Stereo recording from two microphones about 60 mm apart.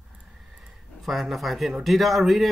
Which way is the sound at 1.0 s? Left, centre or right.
Centre.